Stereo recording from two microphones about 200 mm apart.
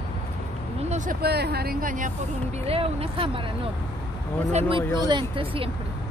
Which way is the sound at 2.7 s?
30° right (ahead or behind).